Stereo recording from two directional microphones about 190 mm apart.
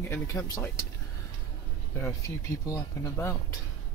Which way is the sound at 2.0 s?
15° left (ahead or behind).